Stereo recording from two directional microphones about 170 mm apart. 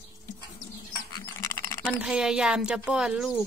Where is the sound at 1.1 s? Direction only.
15° left (ahead or behind).